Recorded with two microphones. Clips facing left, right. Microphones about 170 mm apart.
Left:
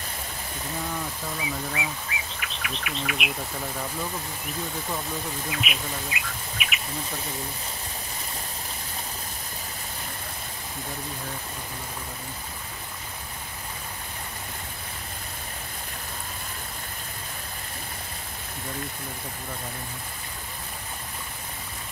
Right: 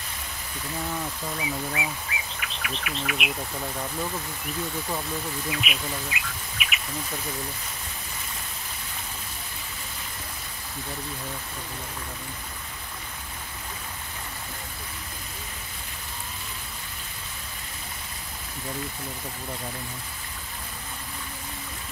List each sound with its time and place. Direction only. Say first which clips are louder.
1.3 s bird: right 1 dB; centre (ahead or behind)
5.5 s speech: right 2 dB; centre (ahead or behind)